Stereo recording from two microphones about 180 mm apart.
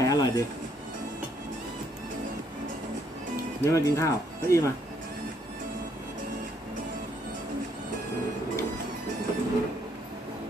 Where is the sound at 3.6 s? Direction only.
15° left (ahead or behind).